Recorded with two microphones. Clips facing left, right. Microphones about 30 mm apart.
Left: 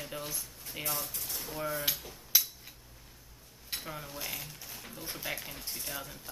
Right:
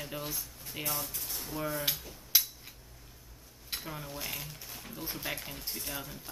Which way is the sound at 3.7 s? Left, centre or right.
Centre.